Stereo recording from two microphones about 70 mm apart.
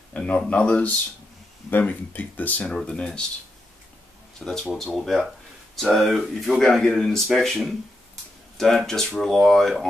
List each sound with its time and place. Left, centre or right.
0.1 s speech: centre
2.6 s speech: centre
4.4 s speech: centre